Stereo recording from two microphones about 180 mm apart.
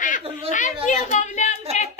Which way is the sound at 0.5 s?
45° left (ahead or behind).